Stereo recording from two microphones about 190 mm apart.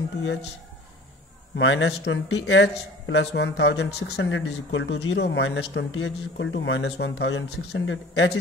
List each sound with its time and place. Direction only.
1.5 s speech: 70° left (ahead or behind)